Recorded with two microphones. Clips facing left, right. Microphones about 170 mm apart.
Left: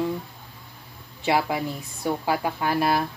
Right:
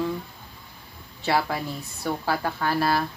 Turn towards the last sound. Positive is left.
turn(degrees=15)  # may be behind; listen again after turning